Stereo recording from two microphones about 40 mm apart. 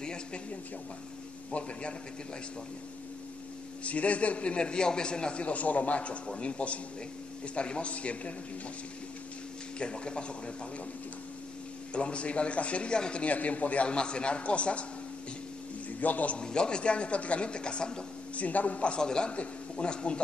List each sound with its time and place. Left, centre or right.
0.0 s a sound: left
1.5 s speech: left
3.8 s speech: left
5.4 s a man's voice: left
9.8 s speech: left
11.9 s a man's voice: left
16.0 s a man's voice: left
16.3 s speech: left
18.3 s a man's voice: left
18.9 s speech: left